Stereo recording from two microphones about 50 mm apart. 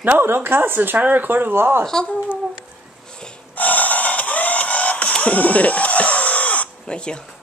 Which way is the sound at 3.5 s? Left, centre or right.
Left.